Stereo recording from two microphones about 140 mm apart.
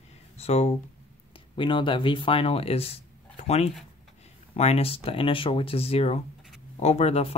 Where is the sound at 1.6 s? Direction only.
35° left (ahead or behind).